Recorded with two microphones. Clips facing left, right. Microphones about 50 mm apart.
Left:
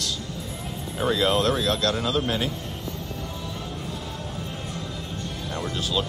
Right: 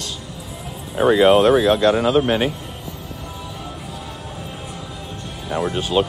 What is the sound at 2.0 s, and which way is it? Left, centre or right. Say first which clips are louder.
Speech: right 8 dB; right.